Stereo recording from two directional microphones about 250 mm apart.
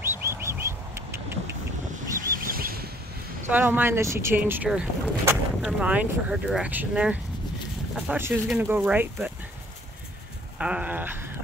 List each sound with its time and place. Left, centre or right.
0.0 s bird: centre
2.4 s a sound: right
3.4 s speech: centre
10.6 s speech: centre